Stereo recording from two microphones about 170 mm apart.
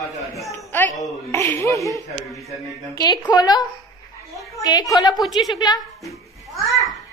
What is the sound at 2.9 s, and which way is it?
A woman's voice, 20° left (ahead or behind).